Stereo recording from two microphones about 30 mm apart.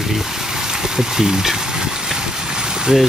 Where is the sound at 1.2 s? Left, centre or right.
Centre.